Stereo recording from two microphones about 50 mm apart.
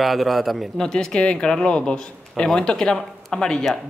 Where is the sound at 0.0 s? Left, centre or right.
Centre.